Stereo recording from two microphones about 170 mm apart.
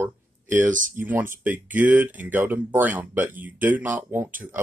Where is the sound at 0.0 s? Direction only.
15° right (ahead or behind).